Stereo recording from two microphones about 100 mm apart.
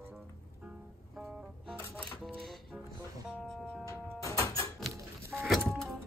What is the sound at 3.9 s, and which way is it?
Music, 30° left (ahead or behind).